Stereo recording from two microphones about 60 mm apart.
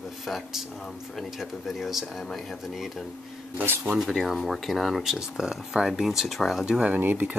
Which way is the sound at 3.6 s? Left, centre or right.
Right.